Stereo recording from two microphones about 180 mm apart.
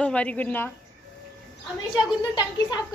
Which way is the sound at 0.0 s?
5° left (ahead or behind).